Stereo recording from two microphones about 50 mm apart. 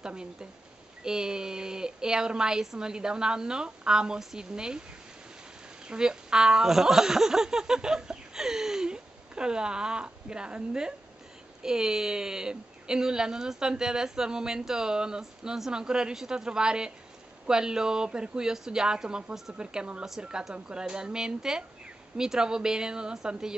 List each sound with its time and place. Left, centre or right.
0.0 s speech: centre
5.9 s speech: centre